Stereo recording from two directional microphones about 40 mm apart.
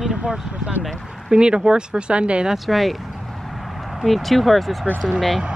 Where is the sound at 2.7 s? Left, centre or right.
Centre.